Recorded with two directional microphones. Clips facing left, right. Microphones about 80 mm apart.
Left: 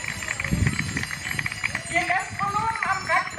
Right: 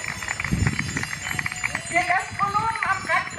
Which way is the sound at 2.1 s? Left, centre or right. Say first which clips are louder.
Right 2 dB; centre.